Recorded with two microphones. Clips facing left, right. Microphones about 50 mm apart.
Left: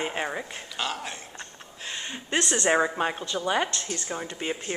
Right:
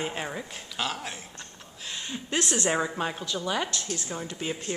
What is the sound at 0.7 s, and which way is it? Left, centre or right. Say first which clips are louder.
Speech: even; centre.